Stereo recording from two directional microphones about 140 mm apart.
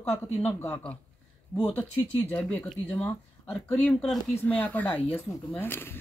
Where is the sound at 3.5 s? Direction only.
5° left (ahead or behind).